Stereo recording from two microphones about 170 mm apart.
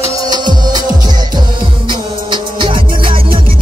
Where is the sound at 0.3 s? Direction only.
25° right (ahead or behind).